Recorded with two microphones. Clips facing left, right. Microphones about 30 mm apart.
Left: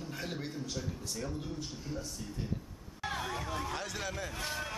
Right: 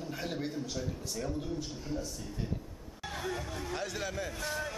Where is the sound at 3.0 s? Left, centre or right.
Centre.